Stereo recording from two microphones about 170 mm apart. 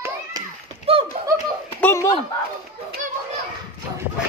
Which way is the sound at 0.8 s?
30° right (ahead or behind).